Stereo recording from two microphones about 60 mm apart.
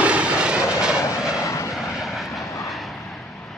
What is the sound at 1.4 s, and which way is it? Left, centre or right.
Vehicle, left.